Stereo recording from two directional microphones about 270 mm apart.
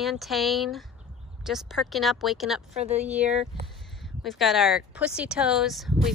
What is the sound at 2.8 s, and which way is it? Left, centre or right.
Speech, right.